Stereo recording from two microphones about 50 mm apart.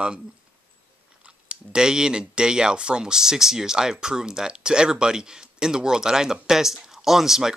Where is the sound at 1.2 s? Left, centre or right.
Centre.